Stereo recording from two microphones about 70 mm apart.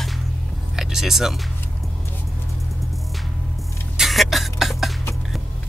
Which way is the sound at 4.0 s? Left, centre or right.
Centre.